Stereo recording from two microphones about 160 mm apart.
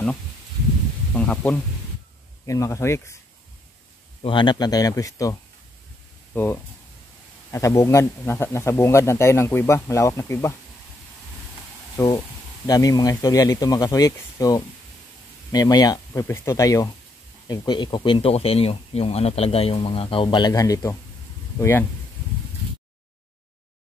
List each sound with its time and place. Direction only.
1.1 s speech: 10° left (ahead or behind)
2.4 s speech: 20° left (ahead or behind)
4.2 s speech: 30° left (ahead or behind)
6.3 s a man's voice: 15° left (ahead or behind)
12.0 s a man's voice: 15° left (ahead or behind)